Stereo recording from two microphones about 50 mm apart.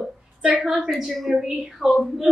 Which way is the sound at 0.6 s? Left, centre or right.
Centre.